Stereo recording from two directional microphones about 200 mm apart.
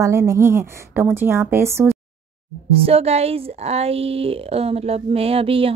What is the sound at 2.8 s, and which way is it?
Speech, 30° right (ahead or behind).